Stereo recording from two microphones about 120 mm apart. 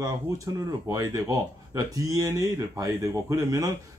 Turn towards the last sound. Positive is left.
turn(degrees=-25)  # may be behind; listen again after turning